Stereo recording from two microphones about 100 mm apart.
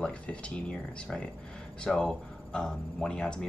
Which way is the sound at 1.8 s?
10° left (ahead or behind).